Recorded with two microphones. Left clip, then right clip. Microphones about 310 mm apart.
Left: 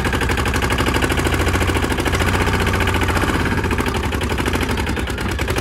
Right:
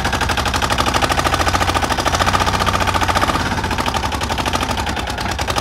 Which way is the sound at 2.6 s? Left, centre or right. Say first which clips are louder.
Right 3 dB; centre.